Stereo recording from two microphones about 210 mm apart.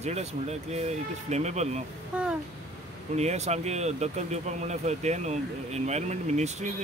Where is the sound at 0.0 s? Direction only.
30° right (ahead or behind).